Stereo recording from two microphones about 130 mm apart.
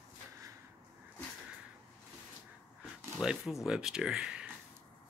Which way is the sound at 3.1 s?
Centre (ahead or behind).